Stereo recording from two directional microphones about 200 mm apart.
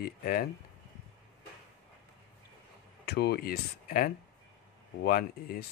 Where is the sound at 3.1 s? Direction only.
55° left (ahead or behind).